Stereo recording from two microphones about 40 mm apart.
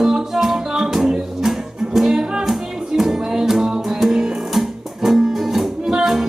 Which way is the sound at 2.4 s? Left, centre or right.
Centre.